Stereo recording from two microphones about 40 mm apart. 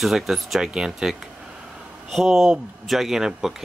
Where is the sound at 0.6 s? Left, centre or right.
Centre.